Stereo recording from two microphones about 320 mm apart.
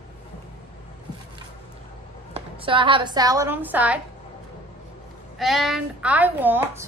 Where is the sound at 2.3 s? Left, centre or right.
Centre.